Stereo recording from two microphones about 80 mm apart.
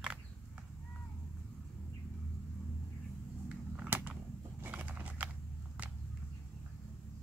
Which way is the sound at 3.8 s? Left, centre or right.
Right.